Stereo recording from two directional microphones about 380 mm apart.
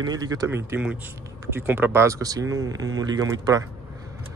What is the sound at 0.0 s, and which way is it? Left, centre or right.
Speech, centre.